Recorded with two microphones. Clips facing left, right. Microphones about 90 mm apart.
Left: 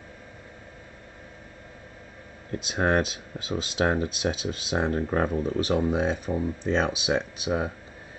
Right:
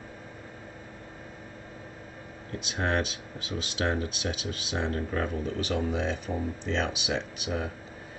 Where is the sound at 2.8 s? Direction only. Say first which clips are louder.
Left 5 dB; 35° left (ahead or behind).